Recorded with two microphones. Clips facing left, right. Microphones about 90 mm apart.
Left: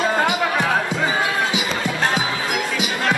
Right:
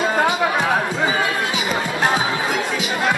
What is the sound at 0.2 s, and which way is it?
Music, 10° right (ahead or behind).